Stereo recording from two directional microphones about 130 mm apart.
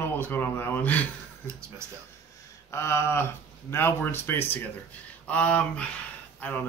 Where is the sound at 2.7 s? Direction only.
20° left (ahead or behind).